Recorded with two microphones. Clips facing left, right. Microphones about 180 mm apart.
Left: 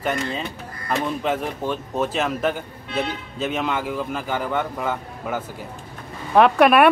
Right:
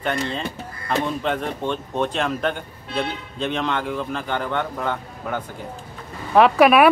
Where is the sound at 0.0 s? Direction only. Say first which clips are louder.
Even; 5° left (ahead or behind).